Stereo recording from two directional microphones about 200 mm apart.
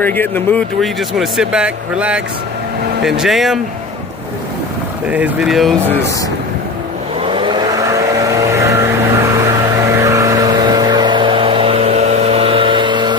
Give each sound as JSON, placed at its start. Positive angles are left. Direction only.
{"t": 0.0, "sound": "speech", "side_deg": 10}
{"t": 5.1, "sound": "speech", "side_deg": -5}
{"t": 7.2, "sound": "vehicle", "side_deg": -25}